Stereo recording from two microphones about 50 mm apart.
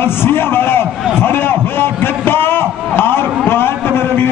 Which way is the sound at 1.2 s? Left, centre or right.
Left.